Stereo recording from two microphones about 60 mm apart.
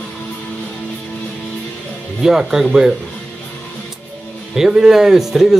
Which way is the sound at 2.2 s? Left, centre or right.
Centre.